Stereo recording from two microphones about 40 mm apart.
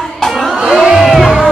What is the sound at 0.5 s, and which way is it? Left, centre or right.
Crowd, centre.